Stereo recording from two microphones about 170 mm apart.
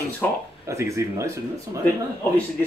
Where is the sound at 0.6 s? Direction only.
15° right (ahead or behind).